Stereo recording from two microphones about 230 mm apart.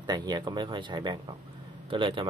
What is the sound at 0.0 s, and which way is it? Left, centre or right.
Speech, centre.